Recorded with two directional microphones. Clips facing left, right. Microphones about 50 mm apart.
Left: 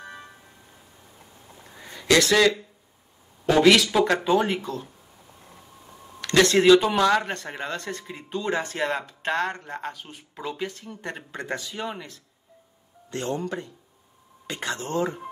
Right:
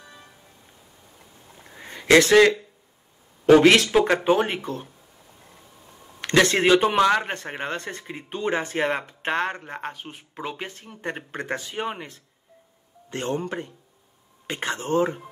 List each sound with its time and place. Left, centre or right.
0.0 s music: left
1.8 s a sound: right
3.5 s speech: right
6.3 s speech: right